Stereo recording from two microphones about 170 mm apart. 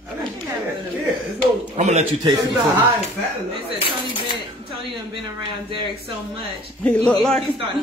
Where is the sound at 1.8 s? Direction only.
40° right (ahead or behind).